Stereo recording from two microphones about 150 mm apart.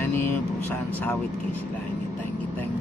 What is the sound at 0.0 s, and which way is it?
Speech, 15° left (ahead or behind).